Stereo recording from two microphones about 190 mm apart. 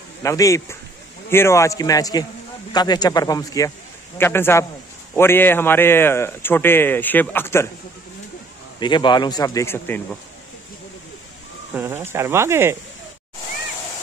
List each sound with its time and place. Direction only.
0.2 s a man's voice: 15° left (ahead or behind)
8.7 s a man's voice: 25° left (ahead or behind)
11.7 s speech: 10° right (ahead or behind)